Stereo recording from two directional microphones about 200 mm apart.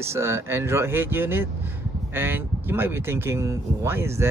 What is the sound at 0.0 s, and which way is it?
Speech, 15° right (ahead or behind).